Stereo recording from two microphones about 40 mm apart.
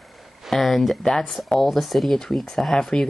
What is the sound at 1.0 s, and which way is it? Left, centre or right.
Speech, centre.